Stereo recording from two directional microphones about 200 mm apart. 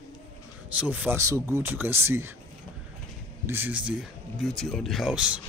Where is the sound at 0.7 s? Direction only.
10° right (ahead or behind).